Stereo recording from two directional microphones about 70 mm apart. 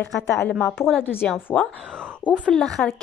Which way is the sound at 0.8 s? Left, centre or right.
Left.